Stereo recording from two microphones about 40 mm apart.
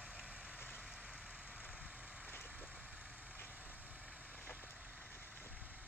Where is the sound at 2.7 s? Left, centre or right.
Right.